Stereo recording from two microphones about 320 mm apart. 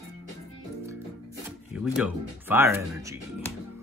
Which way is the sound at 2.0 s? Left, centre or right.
Centre.